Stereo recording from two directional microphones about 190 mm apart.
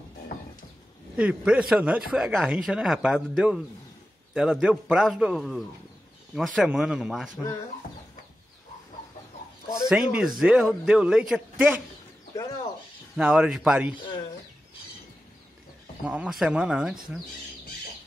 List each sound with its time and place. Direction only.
0.3 s music: 50° left (ahead or behind)
1.1 s speech: 5° right (ahead or behind)
9.8 s speech: 5° right (ahead or behind)
12.4 s bird: 20° left (ahead or behind)
13.1 s speech: 5° right (ahead or behind)
16.1 s speech: 5° right (ahead or behind)